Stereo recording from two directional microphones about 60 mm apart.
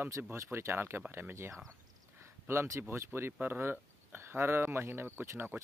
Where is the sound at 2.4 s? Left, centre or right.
Right.